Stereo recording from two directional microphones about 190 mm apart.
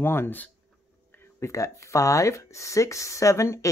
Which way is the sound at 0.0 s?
10° left (ahead or behind).